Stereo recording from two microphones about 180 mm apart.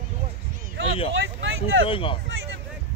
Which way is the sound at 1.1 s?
85° right.